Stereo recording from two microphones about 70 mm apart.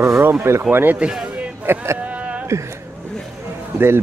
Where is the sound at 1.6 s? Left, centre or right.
Right.